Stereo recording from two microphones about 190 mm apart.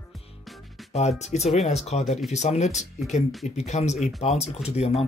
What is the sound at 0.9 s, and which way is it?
Speech, 35° left (ahead or behind).